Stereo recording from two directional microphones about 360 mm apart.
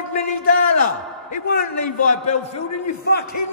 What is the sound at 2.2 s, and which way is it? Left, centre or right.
Speech, left.